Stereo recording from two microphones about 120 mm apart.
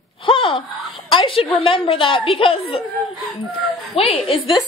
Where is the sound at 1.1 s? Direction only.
50° left (ahead or behind).